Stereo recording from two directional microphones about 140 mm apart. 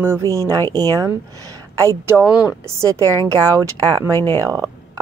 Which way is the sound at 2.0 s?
15° right (ahead or behind).